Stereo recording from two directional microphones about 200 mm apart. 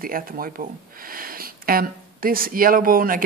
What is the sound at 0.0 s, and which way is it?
Speech, 45° right (ahead or behind).